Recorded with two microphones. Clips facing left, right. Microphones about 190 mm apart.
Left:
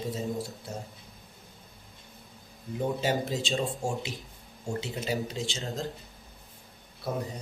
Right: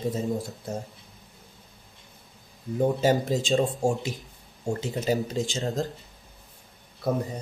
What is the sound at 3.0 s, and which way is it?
Speech, 45° right (ahead or behind).